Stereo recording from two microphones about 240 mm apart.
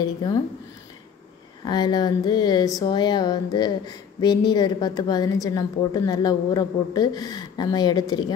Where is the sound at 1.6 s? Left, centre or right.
Centre.